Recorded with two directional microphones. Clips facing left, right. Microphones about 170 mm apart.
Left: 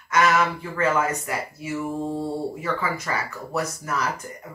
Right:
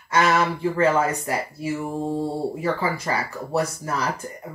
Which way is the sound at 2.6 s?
30° right (ahead or behind).